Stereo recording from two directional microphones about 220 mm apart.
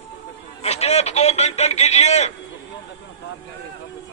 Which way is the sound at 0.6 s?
30° left (ahead or behind).